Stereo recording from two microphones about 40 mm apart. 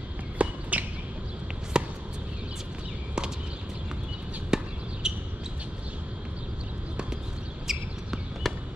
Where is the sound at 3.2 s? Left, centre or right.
Centre.